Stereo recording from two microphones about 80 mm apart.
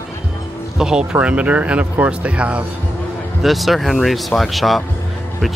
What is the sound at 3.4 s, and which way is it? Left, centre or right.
Speech, centre.